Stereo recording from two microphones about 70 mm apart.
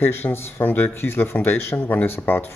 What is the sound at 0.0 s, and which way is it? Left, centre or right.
Speech, left.